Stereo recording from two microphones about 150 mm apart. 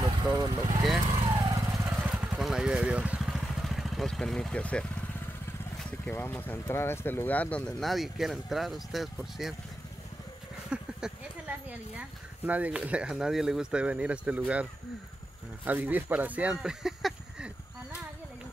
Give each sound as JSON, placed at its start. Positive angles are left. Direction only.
{"t": 0.4, "sound": "speech", "side_deg": -25}
{"t": 1.2, "sound": "vehicle", "side_deg": -35}
{"t": 2.0, "sound": "vehicle", "side_deg": -5}
{"t": 5.9, "sound": "speech", "side_deg": 15}
{"t": 10.7, "sound": "a sound", "side_deg": -5}
{"t": 12.4, "sound": "speech", "side_deg": -10}